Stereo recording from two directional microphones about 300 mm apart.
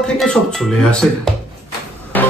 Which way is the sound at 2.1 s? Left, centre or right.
Centre.